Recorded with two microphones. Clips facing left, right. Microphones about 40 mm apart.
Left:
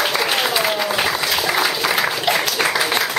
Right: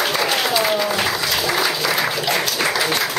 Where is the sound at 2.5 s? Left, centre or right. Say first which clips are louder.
Left 1 dB; centre.